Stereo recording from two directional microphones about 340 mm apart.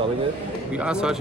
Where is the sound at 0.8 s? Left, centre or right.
Centre.